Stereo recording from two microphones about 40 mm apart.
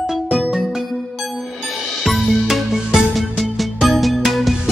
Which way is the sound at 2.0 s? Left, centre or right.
Centre.